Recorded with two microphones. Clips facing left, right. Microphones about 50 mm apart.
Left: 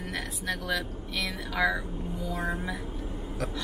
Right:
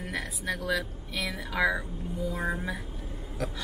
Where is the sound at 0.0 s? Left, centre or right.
Right.